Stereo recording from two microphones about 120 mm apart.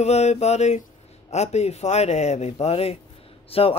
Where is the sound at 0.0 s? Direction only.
65° left (ahead or behind).